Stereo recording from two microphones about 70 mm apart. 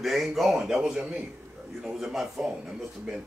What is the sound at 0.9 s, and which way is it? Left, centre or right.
Speech, centre.